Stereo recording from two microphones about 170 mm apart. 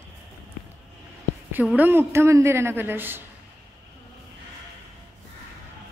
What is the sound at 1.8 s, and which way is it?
A woman's voice, 15° right (ahead or behind).